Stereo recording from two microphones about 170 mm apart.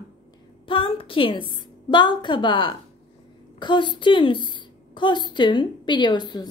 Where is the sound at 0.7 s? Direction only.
30° left (ahead or behind).